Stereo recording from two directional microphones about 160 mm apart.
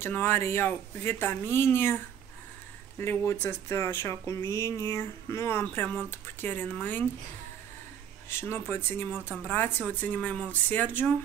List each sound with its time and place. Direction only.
0.0 s speech: 15° left (ahead or behind)
3.0 s speech: 15° left (ahead or behind)
8.3 s speech: 15° left (ahead or behind)